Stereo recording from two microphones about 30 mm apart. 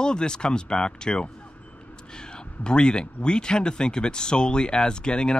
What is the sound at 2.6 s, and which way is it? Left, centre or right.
Speech, left.